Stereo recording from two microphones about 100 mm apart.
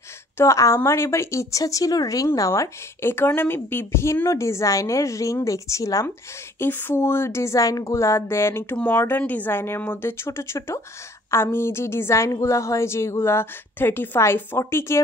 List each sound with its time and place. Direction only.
0.4 s speech: 30° left (ahead or behind)
6.6 s a woman's voice: 20° left (ahead or behind)